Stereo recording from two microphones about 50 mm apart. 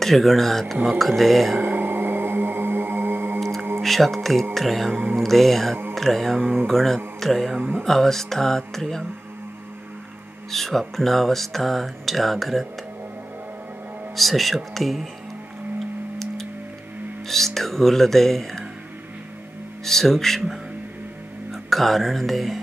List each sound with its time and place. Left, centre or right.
0.0 s speech: centre
1.6 s music: right
3.8 s speech: centre
10.5 s speech: centre
14.1 s speech: centre
17.6 s speech: centre
19.8 s speech: centre
21.5 s speech: centre